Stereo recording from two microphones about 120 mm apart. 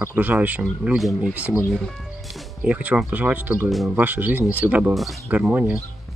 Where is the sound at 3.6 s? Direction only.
Centre (ahead or behind).